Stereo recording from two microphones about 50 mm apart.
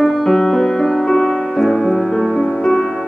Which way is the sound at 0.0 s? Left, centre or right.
Centre.